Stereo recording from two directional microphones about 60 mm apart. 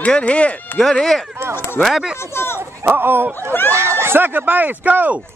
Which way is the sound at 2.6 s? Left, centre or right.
Right.